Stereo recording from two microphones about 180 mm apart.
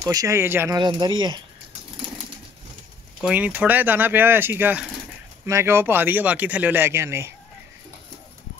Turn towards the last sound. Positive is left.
turn(degrees=-15)  # may be behind; listen again after turning